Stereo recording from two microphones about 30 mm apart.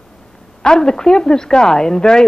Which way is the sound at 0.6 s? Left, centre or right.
Left.